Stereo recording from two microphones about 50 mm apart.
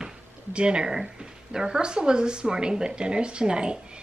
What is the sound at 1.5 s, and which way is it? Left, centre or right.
A woman's voice, centre.